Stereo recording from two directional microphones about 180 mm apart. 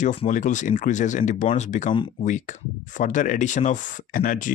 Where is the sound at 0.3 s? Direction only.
45° left (ahead or behind).